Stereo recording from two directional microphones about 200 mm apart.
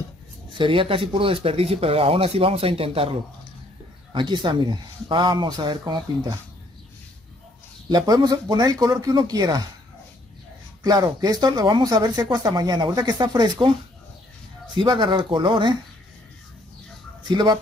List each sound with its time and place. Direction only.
0.5 s speech: 25° right (ahead or behind)
7.9 s speech: 20° right (ahead or behind)
10.8 s speech: 20° right (ahead or behind)
14.8 s speech: 20° right (ahead or behind)
17.2 s speech: 20° right (ahead or behind)